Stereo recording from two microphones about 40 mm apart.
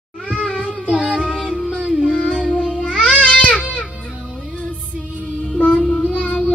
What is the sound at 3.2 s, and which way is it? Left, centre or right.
Baby cry, left.